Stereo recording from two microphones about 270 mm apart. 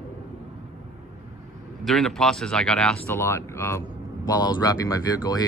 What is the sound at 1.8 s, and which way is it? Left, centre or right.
Speech, centre.